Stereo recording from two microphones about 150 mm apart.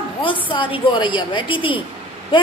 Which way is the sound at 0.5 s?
35° left (ahead or behind).